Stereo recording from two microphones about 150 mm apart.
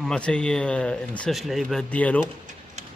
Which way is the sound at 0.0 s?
5° left (ahead or behind).